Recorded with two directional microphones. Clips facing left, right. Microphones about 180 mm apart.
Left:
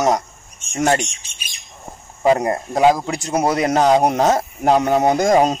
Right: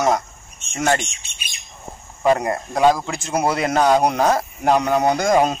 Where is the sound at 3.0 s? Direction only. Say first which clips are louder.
Left 4 dB; 40° left (ahead or behind).